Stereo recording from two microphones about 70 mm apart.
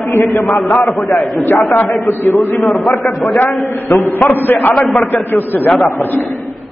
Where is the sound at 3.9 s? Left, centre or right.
Left.